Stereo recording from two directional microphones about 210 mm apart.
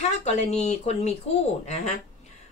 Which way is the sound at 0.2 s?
30° left (ahead or behind).